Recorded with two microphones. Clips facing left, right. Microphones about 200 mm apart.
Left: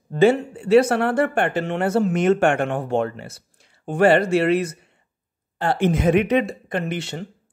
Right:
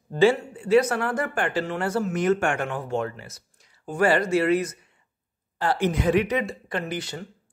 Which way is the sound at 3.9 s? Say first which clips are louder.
Left 5 dB; 60° left (ahead or behind).